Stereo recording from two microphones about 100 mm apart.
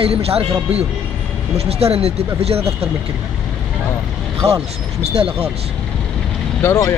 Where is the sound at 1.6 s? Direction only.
90° right.